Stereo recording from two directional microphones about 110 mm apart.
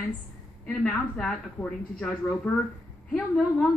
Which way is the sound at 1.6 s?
35° left (ahead or behind).